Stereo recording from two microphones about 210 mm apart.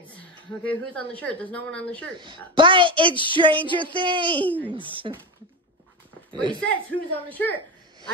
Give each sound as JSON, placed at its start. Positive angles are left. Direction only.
{"t": 0.0, "sound": "a woman's voice", "side_deg": 5}
{"t": 2.1, "sound": "a woman's voice", "side_deg": -20}
{"t": 4.4, "sound": "speech", "side_deg": 5}
{"t": 4.7, "sound": "a woman's voice", "side_deg": -25}
{"t": 6.6, "sound": "speech", "side_deg": 5}